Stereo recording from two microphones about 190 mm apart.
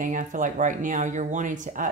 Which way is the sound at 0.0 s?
40° right (ahead or behind).